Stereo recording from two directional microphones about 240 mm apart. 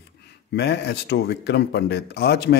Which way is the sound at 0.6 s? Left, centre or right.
Left.